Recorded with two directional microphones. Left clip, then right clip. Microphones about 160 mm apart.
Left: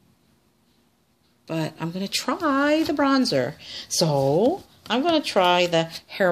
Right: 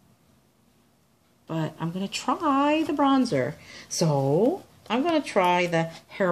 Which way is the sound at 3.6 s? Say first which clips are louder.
Left 6 dB; 90° left.